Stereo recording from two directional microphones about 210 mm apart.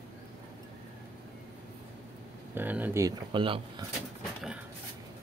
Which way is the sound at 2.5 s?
10° right (ahead or behind).